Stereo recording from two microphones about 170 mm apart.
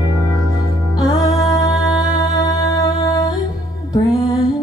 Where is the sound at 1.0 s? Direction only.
20° left (ahead or behind).